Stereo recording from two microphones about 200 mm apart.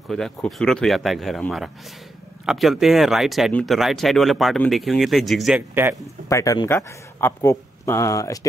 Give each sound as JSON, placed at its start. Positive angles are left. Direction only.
{"t": 0.1, "sound": "speech", "side_deg": 0}
{"t": 6.2, "sound": "speech", "side_deg": 15}